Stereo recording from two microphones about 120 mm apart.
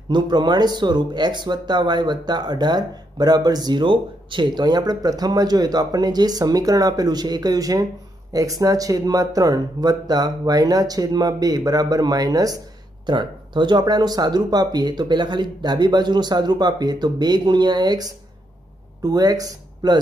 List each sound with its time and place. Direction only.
0.1 s speech: 40° right (ahead or behind)
13.0 s speech: 40° right (ahead or behind)